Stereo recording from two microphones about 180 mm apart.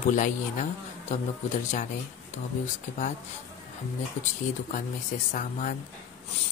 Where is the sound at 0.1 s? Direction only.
45° left (ahead or behind).